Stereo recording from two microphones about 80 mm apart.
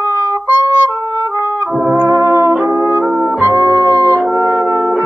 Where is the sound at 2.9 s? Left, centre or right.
Right.